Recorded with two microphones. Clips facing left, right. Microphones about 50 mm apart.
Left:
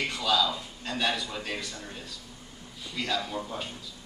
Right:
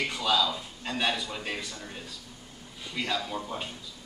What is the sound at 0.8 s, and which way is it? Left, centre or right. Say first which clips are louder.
Speech: even; centre.